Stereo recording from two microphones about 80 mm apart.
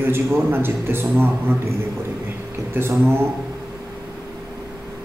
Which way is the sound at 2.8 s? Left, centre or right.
Right.